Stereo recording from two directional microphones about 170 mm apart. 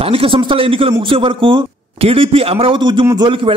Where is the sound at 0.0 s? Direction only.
35° right (ahead or behind).